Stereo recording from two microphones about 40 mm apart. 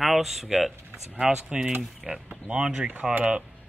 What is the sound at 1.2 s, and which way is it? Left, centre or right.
Speech, right.